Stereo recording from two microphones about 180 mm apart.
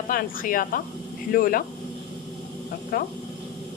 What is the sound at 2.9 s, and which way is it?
Speech, 55° left (ahead or behind).